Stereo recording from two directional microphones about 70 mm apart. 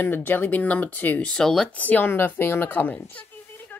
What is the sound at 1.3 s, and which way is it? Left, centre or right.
Speech, centre.